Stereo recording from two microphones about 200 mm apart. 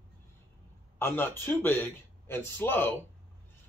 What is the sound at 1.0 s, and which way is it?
A man's voice, 10° left (ahead or behind).